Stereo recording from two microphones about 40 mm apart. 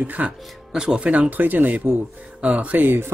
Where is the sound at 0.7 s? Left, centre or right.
Centre.